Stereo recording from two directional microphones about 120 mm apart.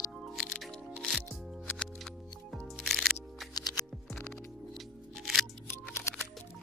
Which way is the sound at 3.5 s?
30° left (ahead or behind).